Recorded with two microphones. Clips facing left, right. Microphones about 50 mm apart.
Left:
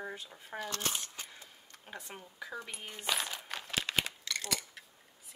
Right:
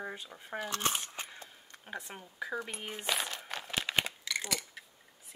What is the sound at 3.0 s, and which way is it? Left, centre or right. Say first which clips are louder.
Coin: even; centre.